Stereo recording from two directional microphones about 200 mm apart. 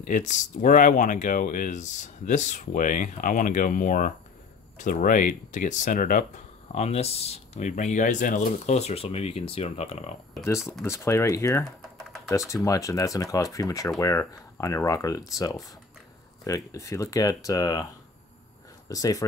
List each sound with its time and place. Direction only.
0.0 s speech: 40° left (ahead or behind)
10.9 s speech: 15° left (ahead or behind)
18.9 s speech: 15° left (ahead or behind)